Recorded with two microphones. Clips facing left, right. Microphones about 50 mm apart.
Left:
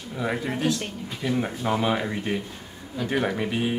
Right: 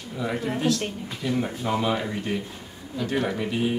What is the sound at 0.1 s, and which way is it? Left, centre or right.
Speech, centre.